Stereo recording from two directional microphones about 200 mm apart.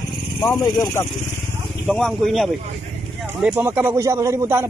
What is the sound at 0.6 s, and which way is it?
Speech, 15° left (ahead or behind).